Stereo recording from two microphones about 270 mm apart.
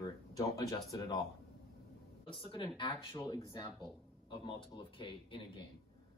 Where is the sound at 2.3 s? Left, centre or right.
Centre.